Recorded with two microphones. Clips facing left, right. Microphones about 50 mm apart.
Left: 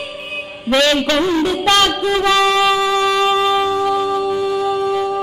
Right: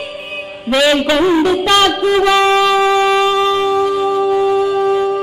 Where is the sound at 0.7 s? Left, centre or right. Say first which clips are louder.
Right 2 dB; centre.